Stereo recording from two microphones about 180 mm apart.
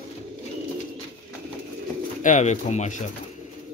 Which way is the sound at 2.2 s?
40° left (ahead or behind).